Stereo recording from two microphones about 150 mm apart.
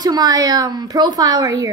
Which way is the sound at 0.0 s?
25° right (ahead or behind).